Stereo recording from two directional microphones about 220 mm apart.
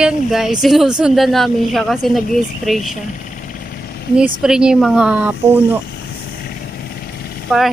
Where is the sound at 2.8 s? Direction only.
35° left (ahead or behind).